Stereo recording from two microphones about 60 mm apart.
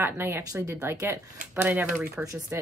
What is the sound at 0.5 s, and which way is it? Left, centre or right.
Speech, right.